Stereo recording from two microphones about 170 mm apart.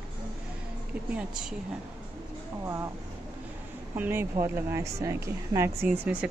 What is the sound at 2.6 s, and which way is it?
Speech, 15° right (ahead or behind).